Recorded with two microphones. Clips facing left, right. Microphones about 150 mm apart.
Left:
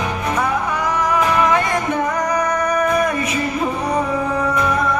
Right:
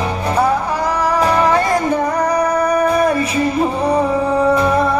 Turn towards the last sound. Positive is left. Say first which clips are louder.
# right 5 dB
turn(degrees=-30)  # may be behind; listen again after turning